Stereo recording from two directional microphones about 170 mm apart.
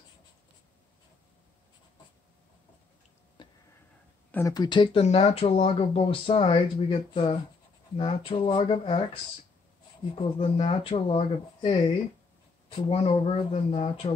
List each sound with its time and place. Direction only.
3.4 s a sound: 25° left (ahead or behind)
4.3 s speech: 15° left (ahead or behind)
5.0 s speech: 40° left (ahead or behind)